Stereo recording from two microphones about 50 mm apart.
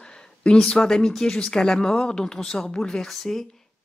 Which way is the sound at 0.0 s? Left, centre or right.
Centre.